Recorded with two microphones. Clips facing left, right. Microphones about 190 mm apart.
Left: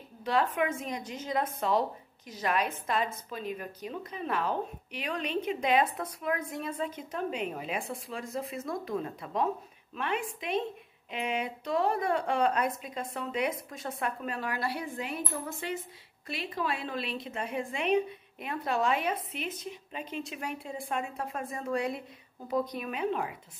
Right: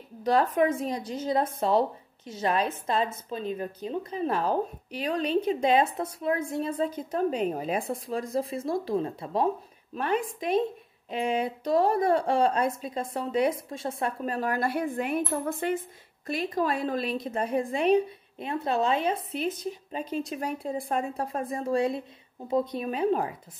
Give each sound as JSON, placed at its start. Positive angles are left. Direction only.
{"t": 0.2, "sound": "a woman's voice", "side_deg": -40}